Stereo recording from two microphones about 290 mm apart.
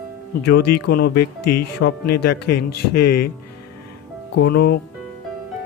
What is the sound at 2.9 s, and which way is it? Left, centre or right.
Speech, left.